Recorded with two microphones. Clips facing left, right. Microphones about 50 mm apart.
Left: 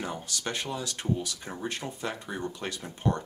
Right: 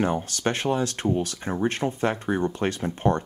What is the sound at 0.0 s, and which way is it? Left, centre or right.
Speech, right.